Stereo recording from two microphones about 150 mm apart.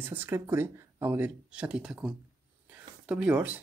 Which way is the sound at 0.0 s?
15° right (ahead or behind).